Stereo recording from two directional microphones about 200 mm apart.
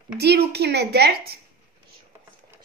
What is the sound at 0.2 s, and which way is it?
A woman's voice, 55° right (ahead or behind).